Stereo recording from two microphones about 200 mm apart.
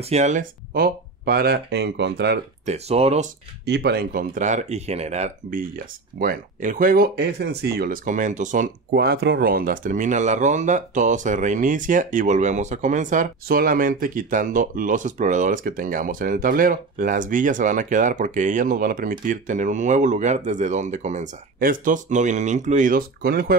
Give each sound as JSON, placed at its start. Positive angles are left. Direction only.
{"t": 0.1, "sound": "speech", "side_deg": -35}
{"t": 2.6, "sound": "speech", "side_deg": -30}
{"t": 3.6, "sound": "speech", "side_deg": -55}
{"t": 6.1, "sound": "speech", "side_deg": -45}
{"t": 8.9, "sound": "speech", "side_deg": -55}